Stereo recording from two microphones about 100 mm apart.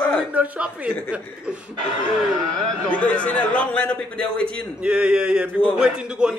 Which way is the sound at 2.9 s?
10° left (ahead or behind).